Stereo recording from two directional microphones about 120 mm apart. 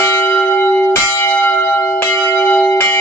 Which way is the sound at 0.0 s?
20° left (ahead or behind).